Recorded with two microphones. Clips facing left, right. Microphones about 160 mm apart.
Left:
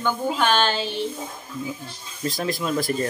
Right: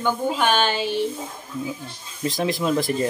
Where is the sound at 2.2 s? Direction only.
15° right (ahead or behind).